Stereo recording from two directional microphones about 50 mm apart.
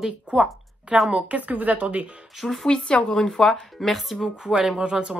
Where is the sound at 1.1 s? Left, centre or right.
Right.